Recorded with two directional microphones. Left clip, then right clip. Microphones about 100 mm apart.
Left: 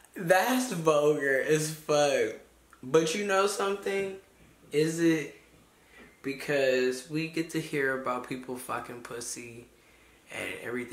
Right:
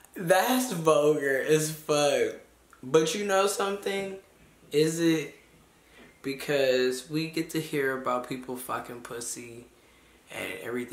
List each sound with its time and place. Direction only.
0.1 s speech: 15° right (ahead or behind)